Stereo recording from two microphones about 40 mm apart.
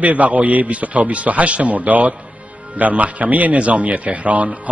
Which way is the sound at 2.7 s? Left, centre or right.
Right.